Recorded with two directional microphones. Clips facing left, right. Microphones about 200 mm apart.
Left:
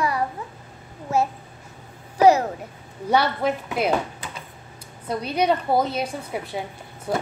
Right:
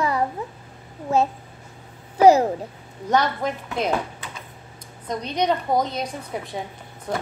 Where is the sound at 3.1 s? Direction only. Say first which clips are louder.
Left 1 dB; 10° left (ahead or behind).